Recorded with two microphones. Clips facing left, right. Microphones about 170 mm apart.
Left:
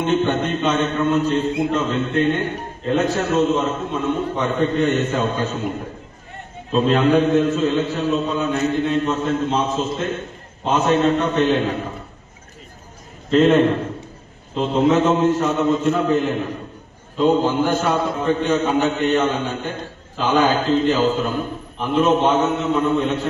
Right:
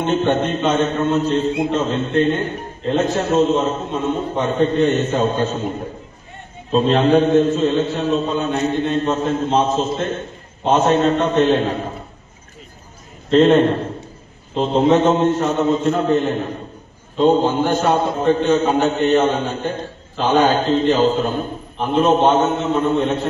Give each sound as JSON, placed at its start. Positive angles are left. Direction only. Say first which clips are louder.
{"t": 0.0, "sound": "a man's voice", "louder": "right 1 dB", "side_deg": -40}
{"t": 0.8, "sound": "a man's voice", "louder": "right 1 dB", "side_deg": -25}
{"t": 6.7, "sound": "a man's voice", "louder": "right 2 dB", "side_deg": -30}
{"t": 9.7, "sound": "a man's voice", "louder": "right 3 dB", "side_deg": -40}
{"t": 10.6, "sound": "a man's voice", "louder": "right 2 dB", "side_deg": -30}
{"t": 11.4, "sound": "a man's voice", "louder": "right 2 dB", "side_deg": -35}
{"t": 13.3, "sound": "a man's voice", "louder": "right 2 dB", "side_deg": -30}
{"t": 20.5, "sound": "a man's voice", "louder": "right 2 dB", "side_deg": -25}